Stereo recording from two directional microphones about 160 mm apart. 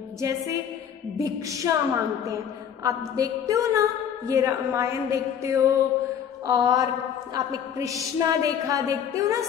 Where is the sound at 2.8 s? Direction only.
20° right (ahead or behind).